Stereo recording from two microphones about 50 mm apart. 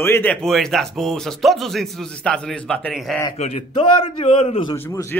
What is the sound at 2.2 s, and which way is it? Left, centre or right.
Speech, centre.